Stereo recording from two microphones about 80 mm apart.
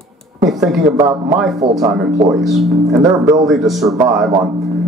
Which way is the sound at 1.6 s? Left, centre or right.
Right.